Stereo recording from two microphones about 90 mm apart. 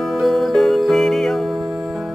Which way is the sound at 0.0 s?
Centre (ahead or behind).